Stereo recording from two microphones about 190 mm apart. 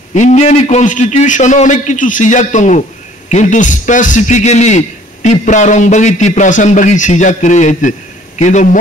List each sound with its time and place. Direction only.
0.1 s a man's voice: 40° left (ahead or behind)